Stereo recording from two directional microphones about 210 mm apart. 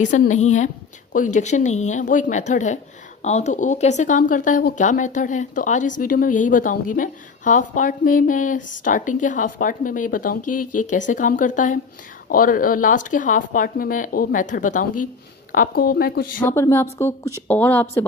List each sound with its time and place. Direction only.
0.0 s speech: 35° left (ahead or behind)
10.4 s speech: 90° left
10.9 s speech: 35° left (ahead or behind)
16.3 s a woman's voice: 10° left (ahead or behind)